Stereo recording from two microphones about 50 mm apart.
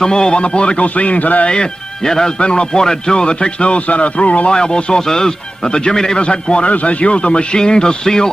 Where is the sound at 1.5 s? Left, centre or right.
Centre.